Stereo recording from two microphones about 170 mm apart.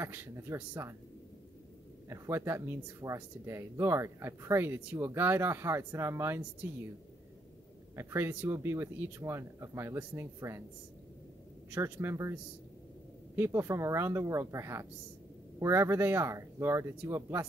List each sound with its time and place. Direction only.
0.0 s speech: 10° right (ahead or behind)
2.0 s speech: 15° right (ahead or behind)
7.9 s speech: 15° right (ahead or behind)
11.7 s speech: 15° right (ahead or behind)
13.4 s speech: 15° right (ahead or behind)